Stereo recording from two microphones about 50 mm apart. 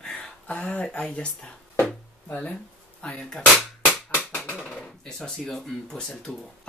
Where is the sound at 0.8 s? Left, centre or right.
Left.